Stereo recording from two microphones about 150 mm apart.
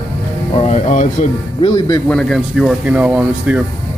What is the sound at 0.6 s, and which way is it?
Speech, 50° left (ahead or behind).